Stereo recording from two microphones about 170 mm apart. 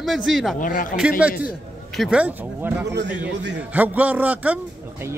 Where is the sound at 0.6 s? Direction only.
50° left (ahead or behind).